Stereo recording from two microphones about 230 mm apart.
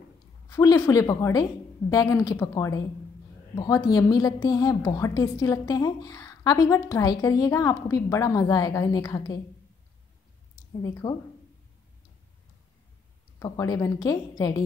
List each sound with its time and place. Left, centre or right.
0.5 s a woman's voice: centre
10.8 s a woman's voice: centre
13.4 s a woman's voice: centre